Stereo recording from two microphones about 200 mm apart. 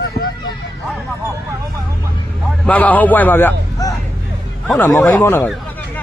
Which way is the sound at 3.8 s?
15° left (ahead or behind).